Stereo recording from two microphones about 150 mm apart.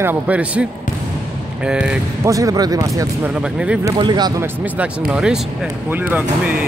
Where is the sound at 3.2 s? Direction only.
5° right (ahead or behind).